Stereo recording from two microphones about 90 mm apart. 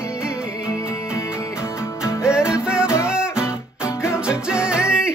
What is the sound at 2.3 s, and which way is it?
Music, 10° right (ahead or behind).